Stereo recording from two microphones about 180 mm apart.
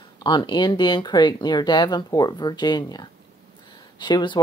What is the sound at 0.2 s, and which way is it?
Speech, 25° left (ahead or behind).